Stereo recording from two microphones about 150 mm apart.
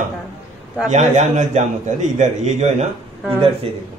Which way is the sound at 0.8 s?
50° right (ahead or behind).